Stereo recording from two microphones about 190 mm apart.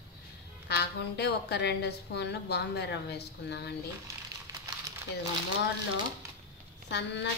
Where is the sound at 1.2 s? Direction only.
60° left (ahead or behind).